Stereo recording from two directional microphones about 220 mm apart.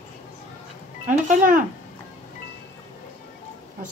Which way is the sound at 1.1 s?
35° right (ahead or behind).